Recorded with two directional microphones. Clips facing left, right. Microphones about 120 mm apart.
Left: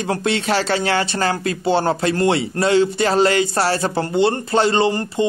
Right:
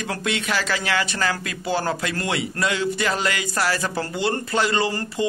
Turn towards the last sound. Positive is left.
turn(degrees=25)  # may be behind; listen again after turning